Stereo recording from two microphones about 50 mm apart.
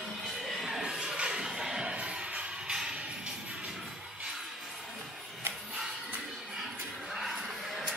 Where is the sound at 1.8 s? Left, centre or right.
Right.